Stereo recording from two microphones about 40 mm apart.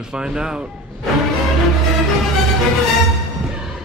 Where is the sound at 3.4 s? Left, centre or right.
Centre.